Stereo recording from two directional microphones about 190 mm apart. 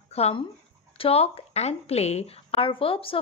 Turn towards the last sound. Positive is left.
turn(degrees=30)  # may be behind; listen again after turning